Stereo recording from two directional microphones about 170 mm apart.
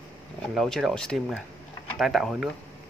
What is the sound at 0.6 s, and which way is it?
Cutlery, centre (ahead or behind).